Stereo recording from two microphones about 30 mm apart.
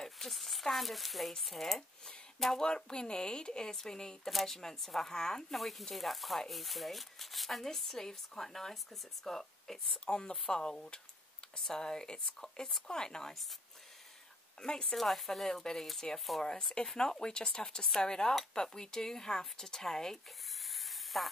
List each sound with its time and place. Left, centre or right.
0.0 s a sound: centre
1.4 s speech: centre
2.6 s speech: left
4.3 s speech: centre
5.1 s speech: centre
5.5 s speech: centre
10.0 s speech: left
14.6 s speech: left
15.0 s speech: centre
16.0 s speech: left
20.7 s a sound: centre